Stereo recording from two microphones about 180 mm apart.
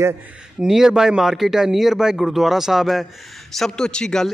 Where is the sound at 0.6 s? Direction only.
5° right (ahead or behind).